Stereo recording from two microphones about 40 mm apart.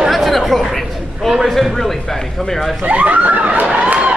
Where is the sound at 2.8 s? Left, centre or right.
Right.